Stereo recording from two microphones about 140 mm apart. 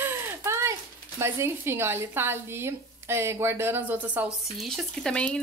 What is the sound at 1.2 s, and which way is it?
Speech, 20° right (ahead or behind).